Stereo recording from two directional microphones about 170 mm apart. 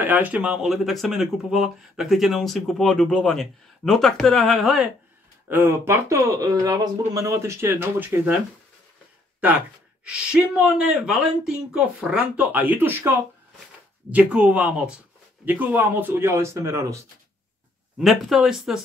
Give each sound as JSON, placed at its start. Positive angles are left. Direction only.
{"t": 0.0, "sound": "speech", "side_deg": -10}
{"t": 5.5, "sound": "speech", "side_deg": -15}
{"t": 10.0, "sound": "speech", "side_deg": -5}
{"t": 14.1, "sound": "speech", "side_deg": -5}
{"t": 17.9, "sound": "speech", "side_deg": 0}